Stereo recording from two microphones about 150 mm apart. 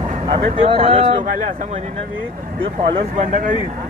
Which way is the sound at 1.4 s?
55° right (ahead or behind).